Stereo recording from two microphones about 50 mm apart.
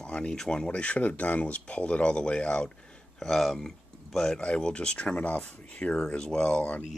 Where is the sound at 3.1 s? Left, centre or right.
Centre.